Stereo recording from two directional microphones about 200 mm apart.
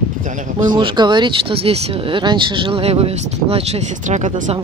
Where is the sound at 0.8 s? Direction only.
25° right (ahead or behind).